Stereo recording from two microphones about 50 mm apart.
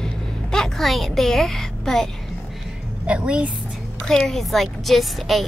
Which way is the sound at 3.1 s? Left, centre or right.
Right.